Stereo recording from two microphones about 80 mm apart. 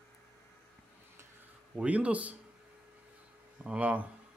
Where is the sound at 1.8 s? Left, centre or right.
Centre.